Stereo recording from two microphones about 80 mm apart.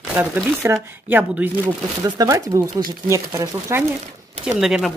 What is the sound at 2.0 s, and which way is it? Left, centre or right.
Speech, right.